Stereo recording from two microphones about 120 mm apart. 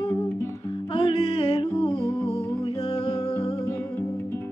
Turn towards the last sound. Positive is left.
turn(degrees=55)  # may be behind; listen again after turning